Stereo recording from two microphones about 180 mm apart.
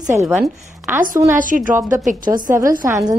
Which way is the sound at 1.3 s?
50° right (ahead or behind).